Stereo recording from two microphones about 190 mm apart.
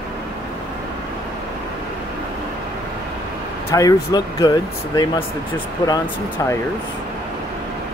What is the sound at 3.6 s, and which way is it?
Speech, 20° left (ahead or behind).